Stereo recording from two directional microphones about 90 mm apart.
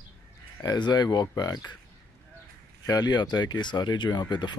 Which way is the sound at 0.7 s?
50° left (ahead or behind).